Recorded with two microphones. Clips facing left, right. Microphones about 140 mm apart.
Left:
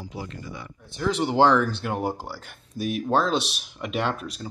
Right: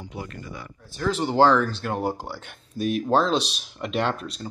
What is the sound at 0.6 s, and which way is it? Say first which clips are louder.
Speech: even; 15° left (ahead or behind).